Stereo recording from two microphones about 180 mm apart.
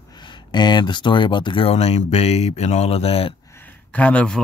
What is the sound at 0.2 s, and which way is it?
Speech, 25° left (ahead or behind).